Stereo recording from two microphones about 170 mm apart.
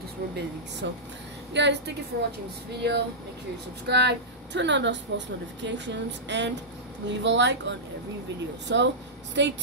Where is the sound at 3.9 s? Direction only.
85° right.